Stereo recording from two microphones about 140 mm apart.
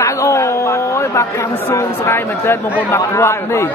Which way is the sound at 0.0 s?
20° left (ahead or behind).